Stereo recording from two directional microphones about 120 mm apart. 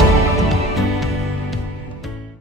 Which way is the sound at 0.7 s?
Centre (ahead or behind).